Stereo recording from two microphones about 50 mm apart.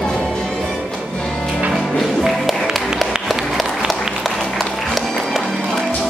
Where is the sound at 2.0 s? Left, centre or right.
Centre.